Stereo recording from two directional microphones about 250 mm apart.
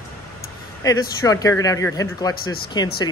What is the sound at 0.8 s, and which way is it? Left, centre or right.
Speech, centre.